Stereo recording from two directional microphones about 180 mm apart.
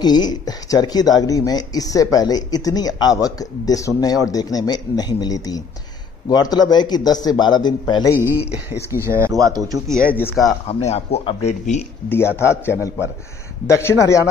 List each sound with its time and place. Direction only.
0.0 s speech: 20° left (ahead or behind)
8.2 s speech: 10° right (ahead or behind)
10.1 s speech: 10° left (ahead or behind)
10.7 s speech: 35° left (ahead or behind)
12.1 s speech: 15° left (ahead or behind)